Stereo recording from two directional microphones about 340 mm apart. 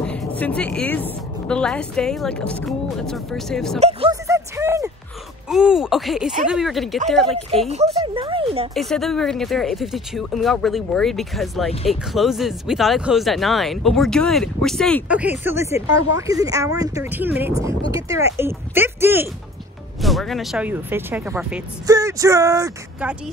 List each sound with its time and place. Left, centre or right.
0.0 s a sound: centre
1.0 s speech: centre
3.8 s a sound: centre
5.5 s speech: centre
7.6 s speech: centre
8.7 s speech: centre